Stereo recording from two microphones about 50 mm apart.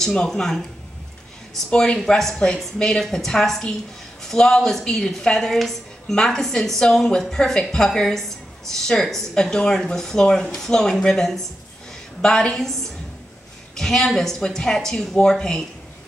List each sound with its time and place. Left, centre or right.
0.0 s speech: centre
1.7 s speech: centre
2.0 s a woman's voice: centre
13.7 s speech: centre